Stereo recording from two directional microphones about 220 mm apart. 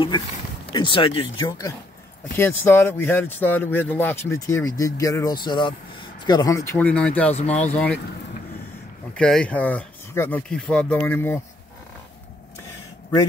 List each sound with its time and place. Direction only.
0.7 s speech: 20° left (ahead or behind); by 8.0 s 5° left (ahead or behind)
9.1 s speech: 5° left (ahead or behind)